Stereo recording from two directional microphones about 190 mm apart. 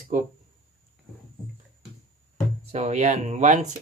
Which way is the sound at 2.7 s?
35° right (ahead or behind).